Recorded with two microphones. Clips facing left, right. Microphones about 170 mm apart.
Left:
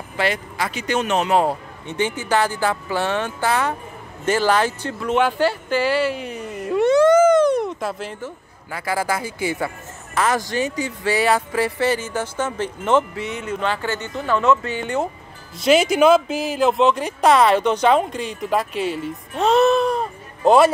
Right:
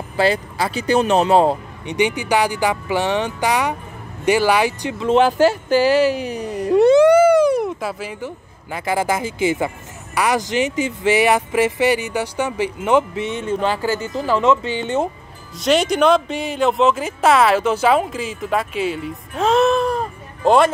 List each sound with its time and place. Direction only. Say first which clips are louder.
0.2 s speech: right 5 dB; 30° right (ahead or behind); by 5.0 s 15° right (ahead or behind)
5.0 s speech: right 5 dB; 30° right (ahead or behind)
7.0 s speech: right 2 dB; 10° right (ahead or behind)
8.6 s speech: right 3 dB; 20° right (ahead or behind)
15.5 s speech: left 1 dB; 5° left (ahead or behind)